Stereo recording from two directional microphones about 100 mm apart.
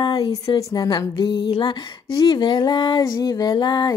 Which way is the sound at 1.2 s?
60° left (ahead or behind).